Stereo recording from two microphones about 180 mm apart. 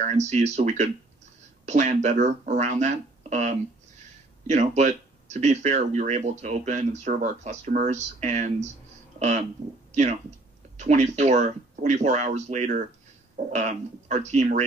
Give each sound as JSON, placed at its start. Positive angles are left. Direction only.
{"t": 0.0, "sound": "speech", "side_deg": -40}
{"t": 10.8, "sound": "speech", "side_deg": -40}